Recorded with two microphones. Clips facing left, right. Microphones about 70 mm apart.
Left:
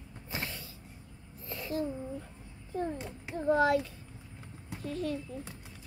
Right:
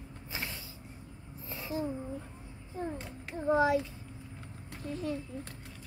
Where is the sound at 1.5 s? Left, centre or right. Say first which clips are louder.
Left 2 dB; centre.